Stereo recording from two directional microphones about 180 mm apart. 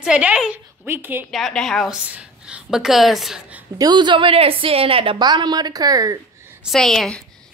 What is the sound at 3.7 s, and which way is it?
A woman's voice, 20° right (ahead or behind).